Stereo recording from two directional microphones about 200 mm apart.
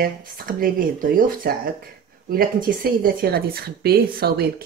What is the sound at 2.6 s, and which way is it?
A woman's voice, 45° right (ahead or behind).